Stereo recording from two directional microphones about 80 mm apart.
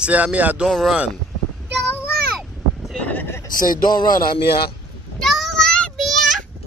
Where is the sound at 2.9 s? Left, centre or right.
Centre.